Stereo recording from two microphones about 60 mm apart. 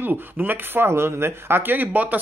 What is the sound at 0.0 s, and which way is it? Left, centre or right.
Speech, right.